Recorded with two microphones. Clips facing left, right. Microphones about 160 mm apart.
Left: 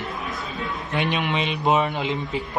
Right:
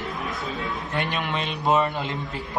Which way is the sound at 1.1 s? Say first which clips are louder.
Left 3 dB; 15° left (ahead or behind).